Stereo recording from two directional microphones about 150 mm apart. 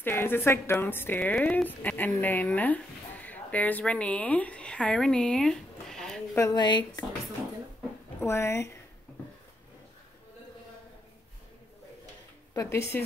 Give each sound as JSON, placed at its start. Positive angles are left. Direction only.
{"t": 0.0, "sound": "a woman's voice", "side_deg": 15}
{"t": 6.3, "sound": "a woman's voice", "side_deg": 25}
{"t": 8.2, "sound": "a woman's voice", "side_deg": 15}
{"t": 12.5, "sound": "a woman's voice", "side_deg": 20}